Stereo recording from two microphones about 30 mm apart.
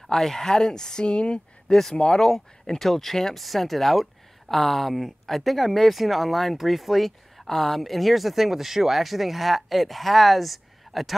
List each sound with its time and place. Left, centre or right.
0.1 s speech: centre
1.0 s speech: left
1.7 s speech: centre